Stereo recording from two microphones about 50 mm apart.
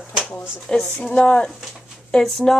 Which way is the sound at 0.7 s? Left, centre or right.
Left.